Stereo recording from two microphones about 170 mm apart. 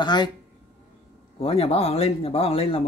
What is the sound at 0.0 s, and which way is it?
Speech, 25° left (ahead or behind).